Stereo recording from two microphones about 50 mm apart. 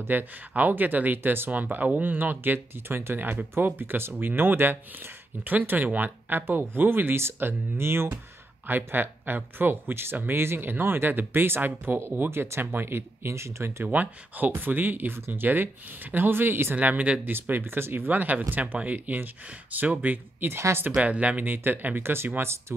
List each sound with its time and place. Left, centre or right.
0.1 s speech: right
3.2 s speech: right
8.6 s speech: right
12.2 s speech: right
13.8 s speech: right
15.1 s speech: right
16.7 s speech: right
17.3 s speech: right
21.0 s speech: right